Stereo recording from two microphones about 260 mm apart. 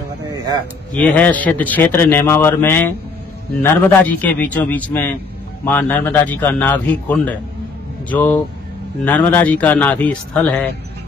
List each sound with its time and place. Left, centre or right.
0.9 s a man's voice: centre